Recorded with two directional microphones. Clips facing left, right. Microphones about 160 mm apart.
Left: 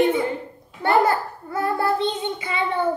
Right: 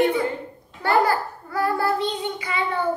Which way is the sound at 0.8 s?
20° left (ahead or behind).